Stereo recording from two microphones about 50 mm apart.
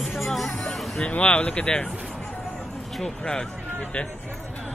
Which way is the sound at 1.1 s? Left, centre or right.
Left.